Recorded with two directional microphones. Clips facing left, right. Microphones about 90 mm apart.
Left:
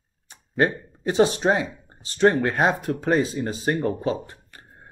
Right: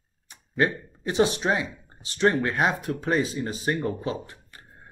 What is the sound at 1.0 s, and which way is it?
Speech, 35° left (ahead or behind).